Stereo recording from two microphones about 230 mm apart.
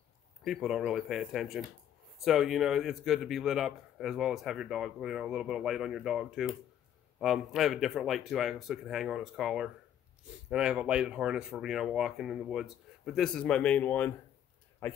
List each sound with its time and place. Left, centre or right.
0.4 s a man's voice: centre